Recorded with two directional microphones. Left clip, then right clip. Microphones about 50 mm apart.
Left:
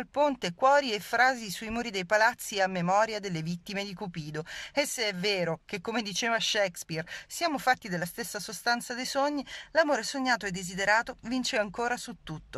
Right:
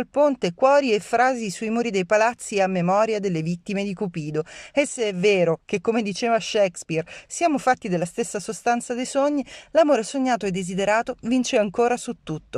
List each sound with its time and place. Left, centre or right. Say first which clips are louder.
0.4 s speech: right 6 dB; right
2.9 s speech: right 6 dB; right
5.9 s speech: right 7 dB; right
6.6 s speech: right 9 dB; right